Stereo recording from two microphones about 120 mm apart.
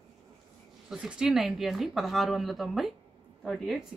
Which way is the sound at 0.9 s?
5° right (ahead or behind).